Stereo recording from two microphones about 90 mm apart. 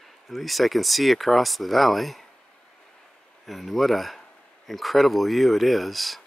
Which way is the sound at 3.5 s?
Centre (ahead or behind).